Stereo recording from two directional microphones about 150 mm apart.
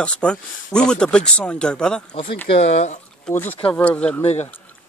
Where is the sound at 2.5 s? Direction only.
45° left (ahead or behind).